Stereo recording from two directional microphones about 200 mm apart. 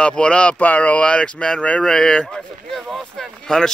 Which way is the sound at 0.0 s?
5° left (ahead or behind).